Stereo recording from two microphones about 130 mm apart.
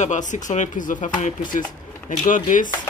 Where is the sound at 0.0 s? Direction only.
70° left (ahead or behind); by 2.7 s 90° left.